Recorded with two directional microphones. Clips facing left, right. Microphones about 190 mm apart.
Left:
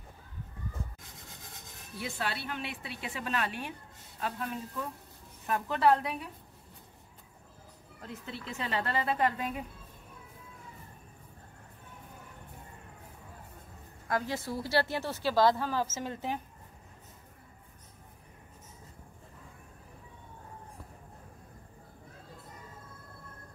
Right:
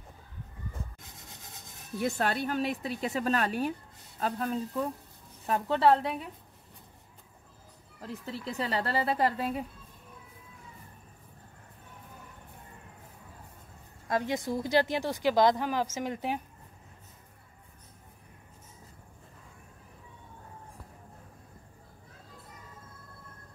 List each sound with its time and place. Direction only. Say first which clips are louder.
2.0 s a woman's voice: right 7 dB; 45° right (ahead or behind); by 6.2 s 30° right (ahead or behind)
8.0 s a woman's voice: right 4 dB; 35° right (ahead or behind)
14.0 s speech: right 3 dB; 20° right (ahead or behind)